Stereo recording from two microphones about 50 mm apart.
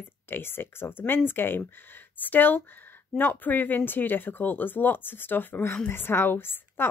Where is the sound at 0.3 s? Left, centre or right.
Left.